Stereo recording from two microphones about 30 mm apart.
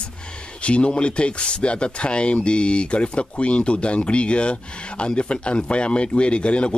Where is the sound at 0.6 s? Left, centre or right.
Left.